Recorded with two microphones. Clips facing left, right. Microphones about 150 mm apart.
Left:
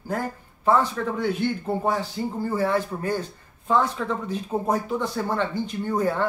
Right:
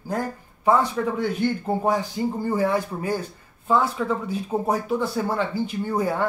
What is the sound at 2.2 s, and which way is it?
Speech, 15° right (ahead or behind).